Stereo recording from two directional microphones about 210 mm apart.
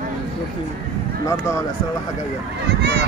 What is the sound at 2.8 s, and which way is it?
Speech, 50° right (ahead or behind).